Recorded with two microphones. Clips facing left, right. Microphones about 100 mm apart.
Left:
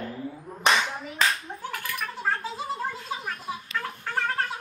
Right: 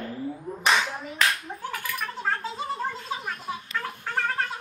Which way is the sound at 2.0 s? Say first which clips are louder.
Left 1 dB; 5° left (ahead or behind).